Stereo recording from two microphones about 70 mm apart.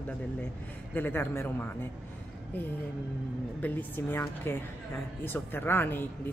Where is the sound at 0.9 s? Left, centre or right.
Left.